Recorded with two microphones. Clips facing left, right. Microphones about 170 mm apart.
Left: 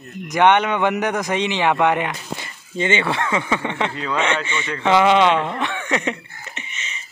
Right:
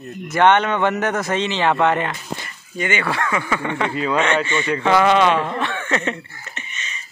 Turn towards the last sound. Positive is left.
turn(degrees=20)  # may be behind; listen again after turning